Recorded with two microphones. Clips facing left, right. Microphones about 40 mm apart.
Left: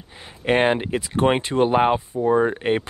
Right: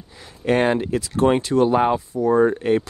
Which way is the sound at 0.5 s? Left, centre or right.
Left.